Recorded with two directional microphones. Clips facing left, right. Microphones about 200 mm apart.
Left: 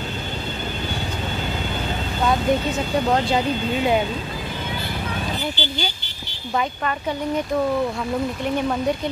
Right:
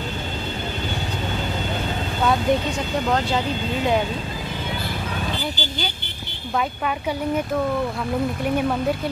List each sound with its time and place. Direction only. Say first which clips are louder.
5.6 s vehicle: left 2 dB; 45° right (ahead or behind)
8.5 s speech: left 1 dB; 5° right (ahead or behind)